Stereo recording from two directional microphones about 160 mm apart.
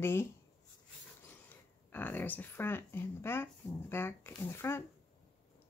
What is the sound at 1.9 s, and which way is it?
Speech, 10° left (ahead or behind).